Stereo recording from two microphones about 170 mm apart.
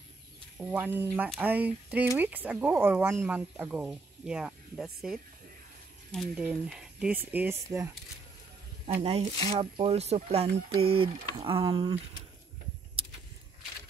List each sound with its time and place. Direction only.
0.7 s speech: 10° right (ahead or behind)
8.8 s speech: 40° right (ahead or behind)